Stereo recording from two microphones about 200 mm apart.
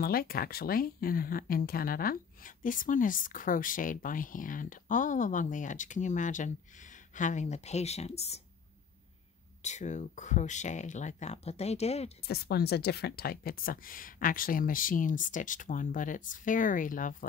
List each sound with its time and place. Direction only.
0.0 s speech: 50° left (ahead or behind); by 8.4 s 30° left (ahead or behind)
9.6 s speech: 35° left (ahead or behind)
12.2 s speech: 50° left (ahead or behind)